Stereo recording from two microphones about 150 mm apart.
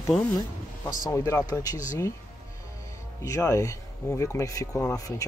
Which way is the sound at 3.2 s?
20° left (ahead or behind).